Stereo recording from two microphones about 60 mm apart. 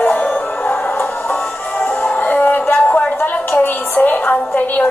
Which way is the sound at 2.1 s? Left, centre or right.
Left.